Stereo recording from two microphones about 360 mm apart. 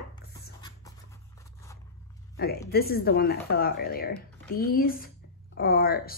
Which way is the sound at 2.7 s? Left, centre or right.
Left.